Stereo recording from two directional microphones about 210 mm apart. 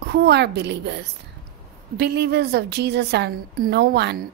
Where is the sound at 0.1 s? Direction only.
50° right (ahead or behind).